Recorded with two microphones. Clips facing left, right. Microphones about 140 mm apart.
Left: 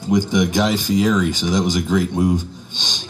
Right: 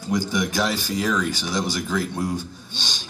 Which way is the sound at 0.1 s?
15° left (ahead or behind).